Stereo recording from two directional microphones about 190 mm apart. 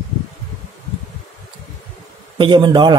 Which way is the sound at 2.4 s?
25° right (ahead or behind).